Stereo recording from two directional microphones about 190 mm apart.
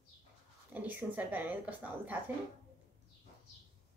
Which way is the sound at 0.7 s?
10° right (ahead or behind).